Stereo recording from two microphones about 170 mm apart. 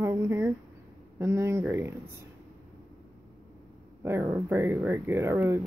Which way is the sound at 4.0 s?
15° right (ahead or behind).